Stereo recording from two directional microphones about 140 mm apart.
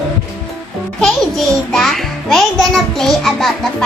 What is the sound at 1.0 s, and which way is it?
A child's voice, 5° left (ahead or behind).